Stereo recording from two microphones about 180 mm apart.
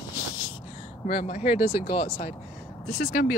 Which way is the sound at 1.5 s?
10° right (ahead or behind).